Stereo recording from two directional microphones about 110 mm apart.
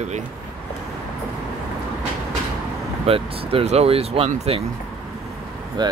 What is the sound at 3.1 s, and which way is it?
Speech, 60° right (ahead or behind).